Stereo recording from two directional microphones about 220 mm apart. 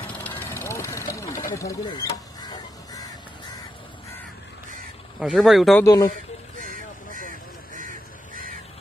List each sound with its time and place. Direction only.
0.2 s vehicle: 10° left (ahead or behind)
1.5 s a sound: 15° left (ahead or behind)
5.2 s speech: centre (ahead or behind)
5.9 s speech: 15° left (ahead or behind)